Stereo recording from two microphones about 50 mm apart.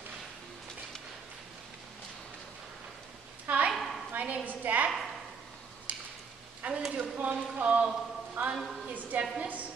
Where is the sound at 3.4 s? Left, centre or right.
Right.